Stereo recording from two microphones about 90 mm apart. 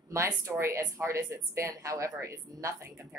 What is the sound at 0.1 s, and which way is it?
Speech, 35° right (ahead or behind).